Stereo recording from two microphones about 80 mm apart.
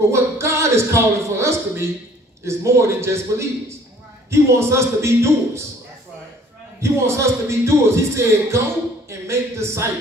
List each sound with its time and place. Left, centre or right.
0.1 s speech: right
6.8 s speech: right